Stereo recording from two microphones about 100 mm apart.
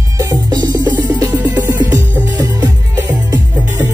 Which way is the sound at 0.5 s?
45° right (ahead or behind).